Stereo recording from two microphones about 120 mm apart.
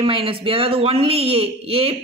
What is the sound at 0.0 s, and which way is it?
A woman's voice, 50° right (ahead or behind).